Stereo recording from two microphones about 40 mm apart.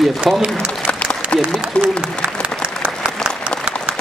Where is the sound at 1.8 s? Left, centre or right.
Left.